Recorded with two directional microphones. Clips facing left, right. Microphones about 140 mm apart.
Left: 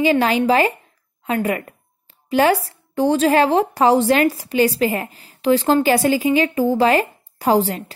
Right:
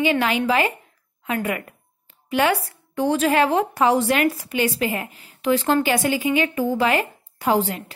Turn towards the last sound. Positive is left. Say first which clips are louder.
# left 4 dB
turn(degrees=35)  # may be behind; listen again after turning